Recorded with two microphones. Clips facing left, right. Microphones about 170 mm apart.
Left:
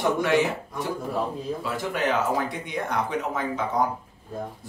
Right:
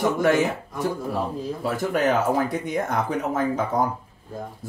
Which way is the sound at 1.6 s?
45° right (ahead or behind).